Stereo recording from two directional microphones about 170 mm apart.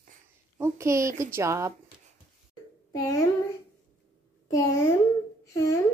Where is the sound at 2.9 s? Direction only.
20° left (ahead or behind).